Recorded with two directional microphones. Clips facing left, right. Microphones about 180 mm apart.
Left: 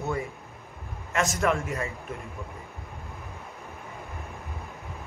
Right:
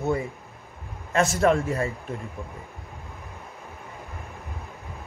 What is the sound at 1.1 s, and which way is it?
Speech, 35° right (ahead or behind).